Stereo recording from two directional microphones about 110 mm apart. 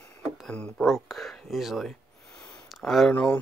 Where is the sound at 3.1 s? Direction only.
20° left (ahead or behind).